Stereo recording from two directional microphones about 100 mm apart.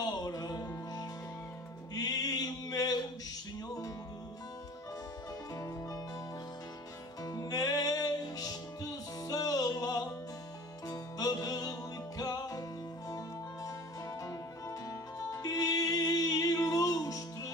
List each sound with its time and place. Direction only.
0.0 s music: 40° left (ahead or behind)
2.0 s mantra: 40° left (ahead or behind)
7.2 s music: 35° left (ahead or behind)
15.1 s music: 35° left (ahead or behind)